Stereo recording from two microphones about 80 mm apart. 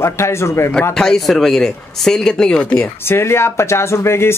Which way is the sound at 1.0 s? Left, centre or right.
Centre.